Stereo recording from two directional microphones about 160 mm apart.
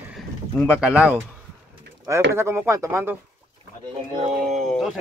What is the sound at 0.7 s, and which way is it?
Speech, 5° right (ahead or behind).